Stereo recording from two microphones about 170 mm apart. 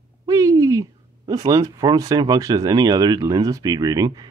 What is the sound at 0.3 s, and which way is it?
Speech, 20° right (ahead or behind).